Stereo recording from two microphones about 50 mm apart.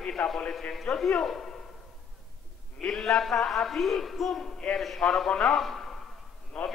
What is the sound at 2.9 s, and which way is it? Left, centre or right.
Speech, centre.